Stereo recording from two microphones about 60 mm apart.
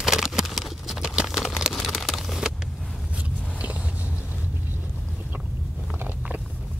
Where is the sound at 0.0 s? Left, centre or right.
Centre.